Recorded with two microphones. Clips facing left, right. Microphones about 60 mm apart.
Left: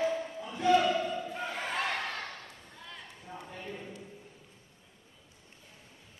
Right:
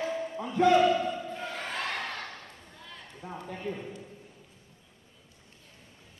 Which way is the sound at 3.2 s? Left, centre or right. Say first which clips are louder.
Right 6 dB; right.